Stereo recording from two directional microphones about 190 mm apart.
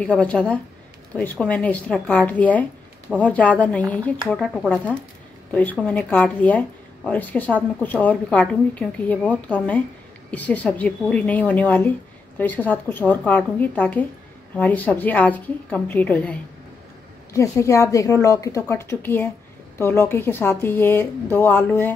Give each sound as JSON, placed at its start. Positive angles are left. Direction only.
{"t": 0.0, "sound": "a woman's voice", "side_deg": 5}